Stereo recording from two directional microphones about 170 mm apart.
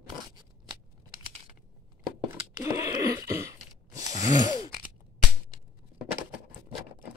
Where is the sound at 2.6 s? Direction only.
20° right (ahead or behind).